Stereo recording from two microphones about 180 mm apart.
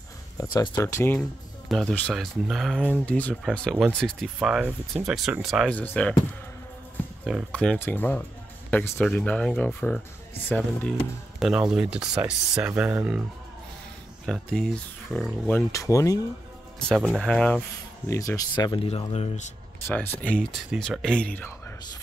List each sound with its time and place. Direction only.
0.4 s speech: 20° left (ahead or behind)
1.7 s speech: 5° left (ahead or behind)
3.7 s speech: 5° right (ahead or behind)
7.2 s speech: centre (ahead or behind)
11.3 s speech: 5° right (ahead or behind)
14.2 s speech: centre (ahead or behind)
16.9 s speech: 5° right (ahead or behind)
18.0 s speech: 15° left (ahead or behind); by 19.4 s 35° left (ahead or behind)
19.9 s speech: 10° left (ahead or behind)